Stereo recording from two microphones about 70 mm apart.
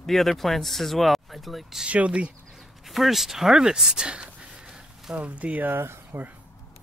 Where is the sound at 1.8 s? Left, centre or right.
Centre.